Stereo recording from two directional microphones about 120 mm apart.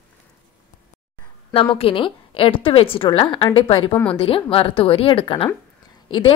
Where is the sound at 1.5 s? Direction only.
50° left (ahead or behind).